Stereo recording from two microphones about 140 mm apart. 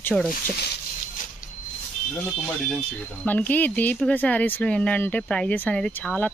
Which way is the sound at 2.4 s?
10° left (ahead or behind).